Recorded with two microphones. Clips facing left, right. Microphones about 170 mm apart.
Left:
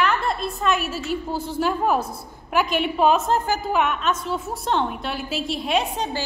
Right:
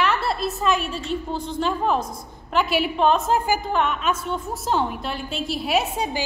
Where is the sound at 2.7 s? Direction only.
5° right (ahead or behind).